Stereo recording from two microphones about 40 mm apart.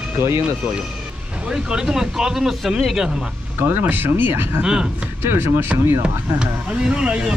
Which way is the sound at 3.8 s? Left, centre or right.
Right.